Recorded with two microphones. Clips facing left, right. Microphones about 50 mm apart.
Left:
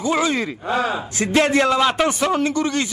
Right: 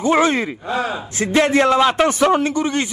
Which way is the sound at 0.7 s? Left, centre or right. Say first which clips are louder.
Left 3 dB; left.